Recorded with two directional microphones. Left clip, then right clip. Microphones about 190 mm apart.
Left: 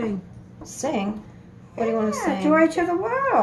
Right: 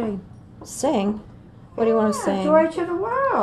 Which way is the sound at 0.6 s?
45° right (ahead or behind).